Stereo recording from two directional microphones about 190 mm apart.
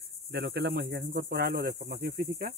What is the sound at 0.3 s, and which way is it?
Cricket, 60° right (ahead or behind).